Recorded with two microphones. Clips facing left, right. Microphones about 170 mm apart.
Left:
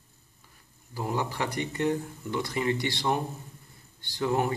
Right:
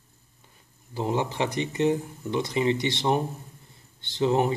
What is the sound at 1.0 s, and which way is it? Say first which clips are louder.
Speech: right 4 dB; 20° right (ahead or behind).